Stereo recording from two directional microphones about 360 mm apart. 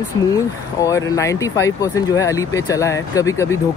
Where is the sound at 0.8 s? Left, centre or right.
Centre.